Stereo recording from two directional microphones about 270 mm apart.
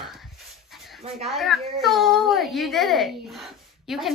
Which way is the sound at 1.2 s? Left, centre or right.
Centre.